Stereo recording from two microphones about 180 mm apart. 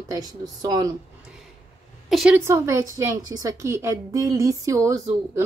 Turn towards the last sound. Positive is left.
turn(degrees=-15)  # may be behind; listen again after turning